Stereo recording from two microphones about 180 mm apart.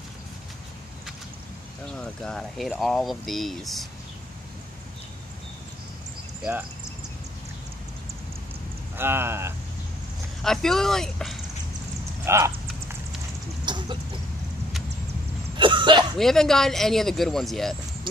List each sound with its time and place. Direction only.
2.0 s speech: 5° left (ahead or behind)
8.9 s speech: 10° right (ahead or behind)
10.4 s speech: centre (ahead or behind)
12.3 s clip-clop: 15° right (ahead or behind)
13.7 s chicken: 25° right (ahead or behind)
15.5 s cough: 25° right (ahead or behind)
16.2 s speech: centre (ahead or behind)